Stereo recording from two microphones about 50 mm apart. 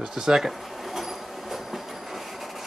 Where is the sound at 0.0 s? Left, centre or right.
Centre.